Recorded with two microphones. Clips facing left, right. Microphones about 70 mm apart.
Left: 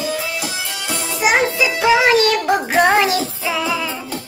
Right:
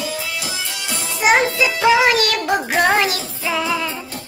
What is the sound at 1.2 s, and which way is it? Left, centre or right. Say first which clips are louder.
Child singing: right 1 dB; centre.